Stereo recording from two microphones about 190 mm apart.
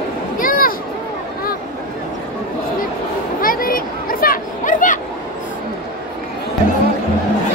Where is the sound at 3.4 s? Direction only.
50° left (ahead or behind).